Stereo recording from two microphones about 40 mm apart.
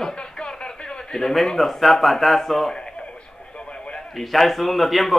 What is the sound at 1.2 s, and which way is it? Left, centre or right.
A man's voice, centre.